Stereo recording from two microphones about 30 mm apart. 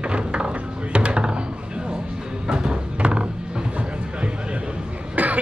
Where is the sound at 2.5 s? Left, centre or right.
Right.